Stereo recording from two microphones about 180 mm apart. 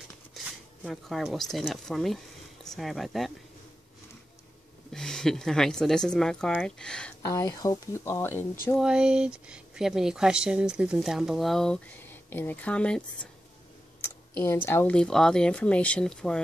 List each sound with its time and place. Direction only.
0.8 s speech: centre (ahead or behind)
4.9 s speech: 5° left (ahead or behind)
7.2 s speech: 15° left (ahead or behind)
8.7 s speech: 5° right (ahead or behind)